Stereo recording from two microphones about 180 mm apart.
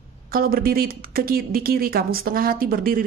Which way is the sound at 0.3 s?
55° right (ahead or behind).